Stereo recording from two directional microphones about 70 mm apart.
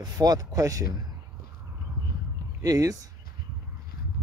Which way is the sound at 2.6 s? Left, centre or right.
Right.